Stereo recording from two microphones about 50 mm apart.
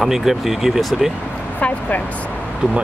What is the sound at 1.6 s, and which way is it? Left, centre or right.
Speech, left.